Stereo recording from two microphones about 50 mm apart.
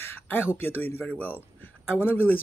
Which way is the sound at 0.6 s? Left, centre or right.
Left.